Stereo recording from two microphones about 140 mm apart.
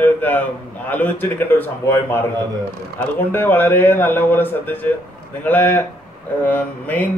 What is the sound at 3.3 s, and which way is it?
A man's voice, 15° left (ahead or behind).